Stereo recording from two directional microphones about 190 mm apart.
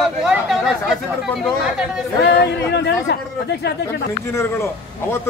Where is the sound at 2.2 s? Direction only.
60° left (ahead or behind).